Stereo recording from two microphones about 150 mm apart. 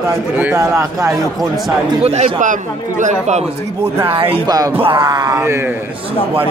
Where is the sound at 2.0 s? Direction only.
50° right (ahead or behind).